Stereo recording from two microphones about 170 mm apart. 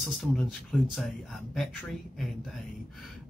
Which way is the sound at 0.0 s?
Centre (ahead or behind).